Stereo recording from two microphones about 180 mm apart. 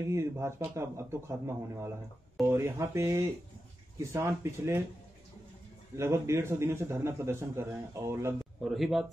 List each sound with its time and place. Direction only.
0.1 s a man's voice: 15° right (ahead or behind)
5.9 s a man's voice: 15° right (ahead or behind)
8.6 s speech: centre (ahead or behind)